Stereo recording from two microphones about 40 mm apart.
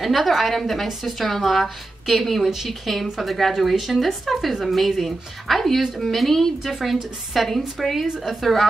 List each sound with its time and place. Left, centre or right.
0.0 s speech: centre